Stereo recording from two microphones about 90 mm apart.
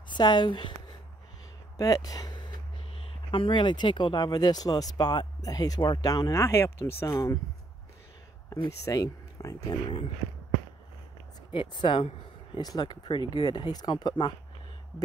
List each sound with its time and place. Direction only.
0.1 s speech: 55° left (ahead or behind)
1.8 s speech: 45° left (ahead or behind)
3.3 s speech: 70° left (ahead or behind); by 6.4 s 45° left (ahead or behind)
6.4 s speech: 30° left (ahead or behind)
8.5 s speech: 40° left (ahead or behind)
11.5 s speech: 60° left (ahead or behind)
12.5 s speech: 50° left (ahead or behind)